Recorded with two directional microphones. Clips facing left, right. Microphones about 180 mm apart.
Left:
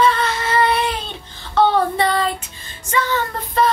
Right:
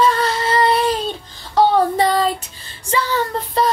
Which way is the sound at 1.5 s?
40° right (ahead or behind).